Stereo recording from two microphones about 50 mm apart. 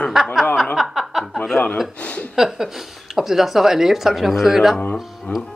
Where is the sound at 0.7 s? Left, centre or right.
Centre.